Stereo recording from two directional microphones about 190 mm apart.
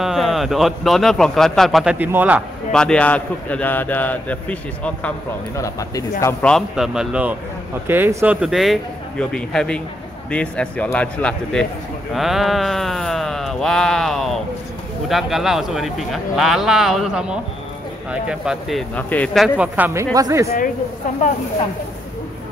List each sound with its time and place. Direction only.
0.0 s a man's voice: centre (ahead or behind)
2.7 s a man's voice: 5° left (ahead or behind)
6.4 s a man's voice: centre (ahead or behind); by 20.4 s 15° right (ahead or behind)